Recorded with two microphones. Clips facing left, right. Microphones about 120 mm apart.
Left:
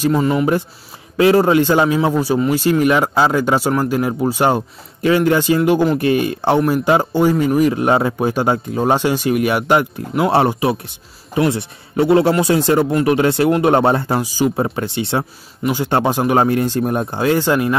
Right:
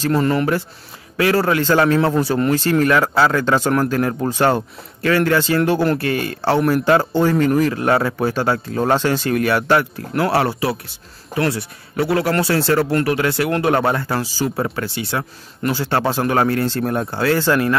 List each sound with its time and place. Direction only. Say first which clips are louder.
0.0 s a man's voice: left 2 dB; 10° left (ahead or behind)
1.1 s a man's voice: left 5 dB; 20° left (ahead or behind)